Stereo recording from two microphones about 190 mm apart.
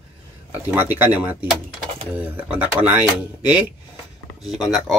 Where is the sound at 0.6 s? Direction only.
10° right (ahead or behind).